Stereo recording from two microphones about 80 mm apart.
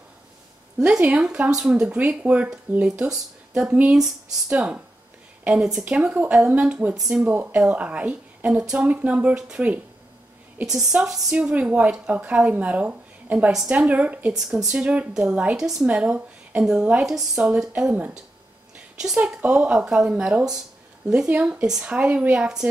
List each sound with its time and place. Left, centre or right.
0.7 s a woman's voice: centre
7.0 s a woman's voice: centre
7.2 s a woman's voice: centre
14.4 s a woman's voice: centre
14.7 s a woman's voice: centre